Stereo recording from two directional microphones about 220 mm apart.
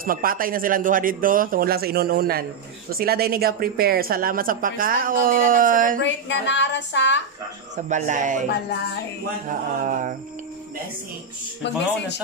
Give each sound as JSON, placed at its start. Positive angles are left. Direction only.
{"t": 0.0, "sound": "speech", "side_deg": -40}
{"t": 5.9, "sound": "speech", "side_deg": 55}
{"t": 7.7, "sound": "speech", "side_deg": -35}
{"t": 9.5, "sound": "speech", "side_deg": -35}